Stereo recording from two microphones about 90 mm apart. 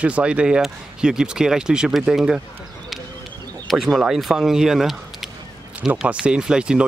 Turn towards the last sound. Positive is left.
turn(degrees=-10)  # may be behind; listen again after turning